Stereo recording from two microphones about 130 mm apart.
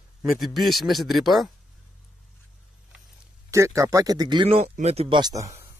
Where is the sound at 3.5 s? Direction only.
25° right (ahead or behind).